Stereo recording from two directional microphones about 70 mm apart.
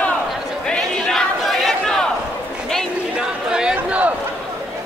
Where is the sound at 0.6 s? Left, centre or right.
Centre.